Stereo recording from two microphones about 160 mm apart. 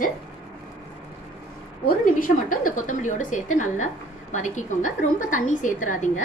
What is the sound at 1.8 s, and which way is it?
A woman's voice, 60° left (ahead or behind).